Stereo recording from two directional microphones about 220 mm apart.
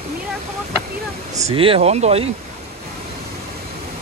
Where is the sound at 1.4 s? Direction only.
25° right (ahead or behind).